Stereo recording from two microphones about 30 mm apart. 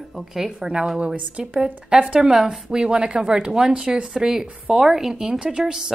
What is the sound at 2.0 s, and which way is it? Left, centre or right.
Speech, right.